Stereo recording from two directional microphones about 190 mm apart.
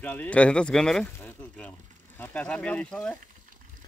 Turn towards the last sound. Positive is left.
turn(degrees=5)  # may be behind; listen again after turning